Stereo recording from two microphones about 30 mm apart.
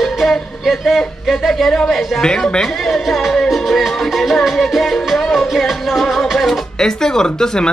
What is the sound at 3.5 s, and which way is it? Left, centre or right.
Music, centre.